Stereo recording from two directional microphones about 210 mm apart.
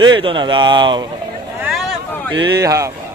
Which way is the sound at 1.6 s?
Centre (ahead or behind).